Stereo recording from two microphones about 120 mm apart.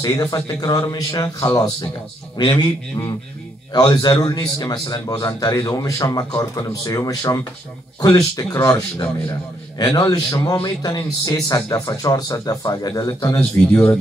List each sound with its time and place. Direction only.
0.0 s a man's voice: 30° left (ahead or behind)